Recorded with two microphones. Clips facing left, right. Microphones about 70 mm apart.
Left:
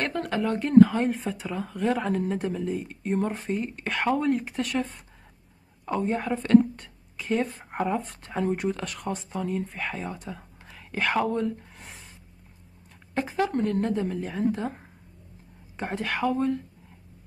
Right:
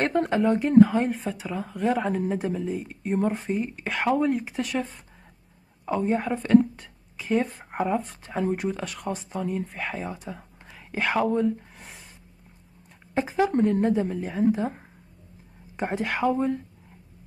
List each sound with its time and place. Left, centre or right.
0.0 s speech: right
0.4 s a woman's voice: centre
13.1 s a woman's voice: centre